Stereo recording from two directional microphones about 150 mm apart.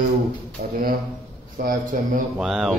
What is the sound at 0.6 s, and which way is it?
Speech, 90° right.